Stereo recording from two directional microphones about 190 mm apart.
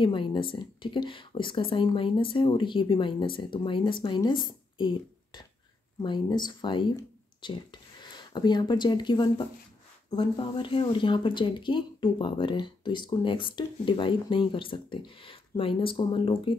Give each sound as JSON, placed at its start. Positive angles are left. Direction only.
{"t": 0.0, "sound": "speech", "side_deg": 25}